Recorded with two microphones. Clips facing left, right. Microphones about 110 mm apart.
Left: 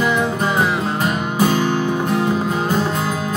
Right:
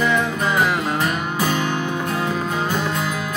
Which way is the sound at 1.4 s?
30° left (ahead or behind).